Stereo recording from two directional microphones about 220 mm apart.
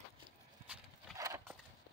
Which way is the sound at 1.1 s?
15° right (ahead or behind).